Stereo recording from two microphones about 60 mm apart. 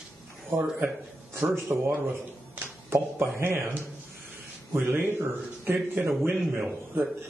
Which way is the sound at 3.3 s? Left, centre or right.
Right.